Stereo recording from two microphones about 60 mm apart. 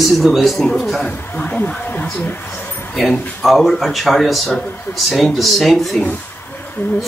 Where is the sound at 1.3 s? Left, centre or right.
Left.